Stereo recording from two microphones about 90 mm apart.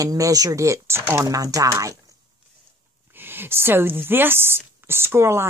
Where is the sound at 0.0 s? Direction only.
40° right (ahead or behind).